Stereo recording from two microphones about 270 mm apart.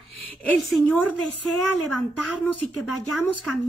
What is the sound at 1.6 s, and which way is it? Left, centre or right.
Speech, right.